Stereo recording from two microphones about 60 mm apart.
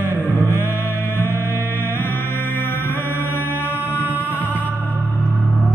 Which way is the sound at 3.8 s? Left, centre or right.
Right.